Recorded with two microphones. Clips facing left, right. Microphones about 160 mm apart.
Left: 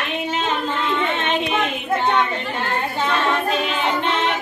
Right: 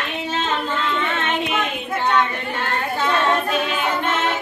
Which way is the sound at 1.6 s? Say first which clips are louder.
Left 2 dB; 20° left (ahead or behind).